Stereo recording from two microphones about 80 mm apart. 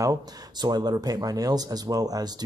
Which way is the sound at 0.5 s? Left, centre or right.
Right.